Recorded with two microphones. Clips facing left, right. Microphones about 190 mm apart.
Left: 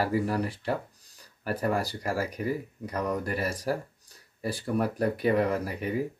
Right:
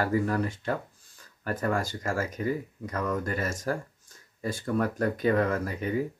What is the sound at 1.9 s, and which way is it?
Speech, 15° left (ahead or behind).